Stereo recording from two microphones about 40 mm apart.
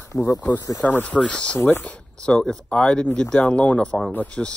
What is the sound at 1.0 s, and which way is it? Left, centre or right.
Speech, left.